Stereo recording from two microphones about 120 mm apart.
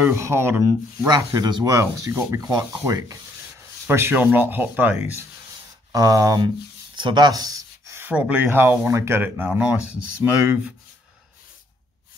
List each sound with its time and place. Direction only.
0.0 s speech: 20° right (ahead or behind)
1.0 s speech: 35° right (ahead or behind); by 4.9 s 15° right (ahead or behind)
5.9 s speech: 30° right (ahead or behind); by 10.6 s 10° right (ahead or behind)